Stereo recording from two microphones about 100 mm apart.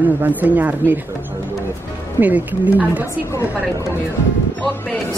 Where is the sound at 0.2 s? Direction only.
15° right (ahead or behind).